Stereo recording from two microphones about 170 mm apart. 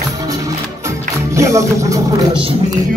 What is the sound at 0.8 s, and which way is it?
Music, 15° right (ahead or behind).